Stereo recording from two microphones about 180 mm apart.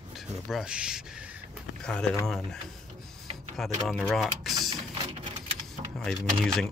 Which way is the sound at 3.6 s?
Centre (ahead or behind).